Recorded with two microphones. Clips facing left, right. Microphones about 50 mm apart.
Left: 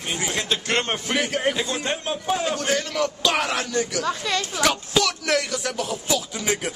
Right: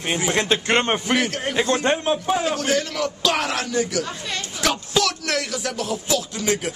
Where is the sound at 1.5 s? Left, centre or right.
Centre.